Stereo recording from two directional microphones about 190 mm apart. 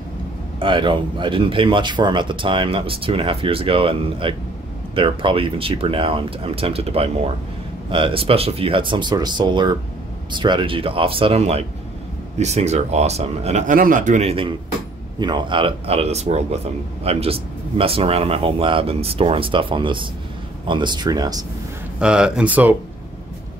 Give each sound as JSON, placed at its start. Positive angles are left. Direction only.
{"t": 0.6, "sound": "a man's voice", "side_deg": -25}
{"t": 22.0, "sound": "speech", "side_deg": -5}